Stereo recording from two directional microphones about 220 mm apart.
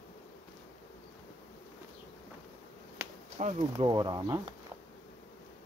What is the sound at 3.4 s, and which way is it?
Speech, 30° right (ahead or behind).